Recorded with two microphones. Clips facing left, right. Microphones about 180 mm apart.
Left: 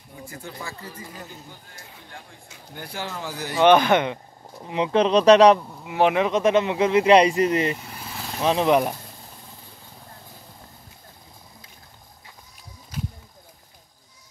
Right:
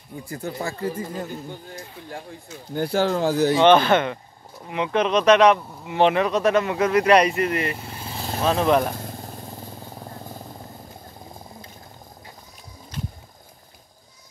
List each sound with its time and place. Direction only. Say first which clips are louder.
0.3 s speech: right 8 dB; 40° right (ahead or behind)
2.7 s speech: right 12 dB; 85° right
3.5 s speech: left 1 dB; 10° left (ahead or behind)
4.6 s speech: left 2 dB; 30° left (ahead or behind)
5.9 s speech: right 1 dB; 10° left (ahead or behind)
6.2 s speech: even; 20° left (ahead or behind)
7.7 s vehicle: right 2 dB; 30° right (ahead or behind)
8.5 s speech: even; 15° left (ahead or behind)
9.0 s motorcycle: right 9 dB; 50° right (ahead or behind)
12.9 s a sound: left 1 dB; 10° left (ahead or behind)